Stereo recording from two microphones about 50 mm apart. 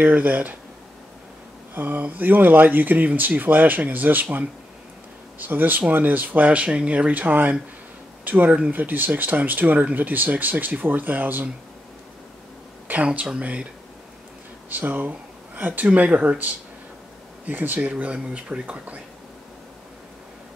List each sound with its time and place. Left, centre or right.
0.0 s speech: right
1.8 s speech: right
12.8 s speech: right
14.7 s speech: right